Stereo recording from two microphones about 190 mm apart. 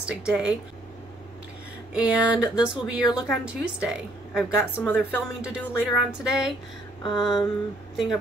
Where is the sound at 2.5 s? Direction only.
5° right (ahead or behind).